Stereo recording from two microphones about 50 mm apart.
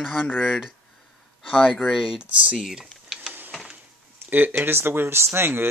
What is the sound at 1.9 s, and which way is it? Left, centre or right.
Speech, centre.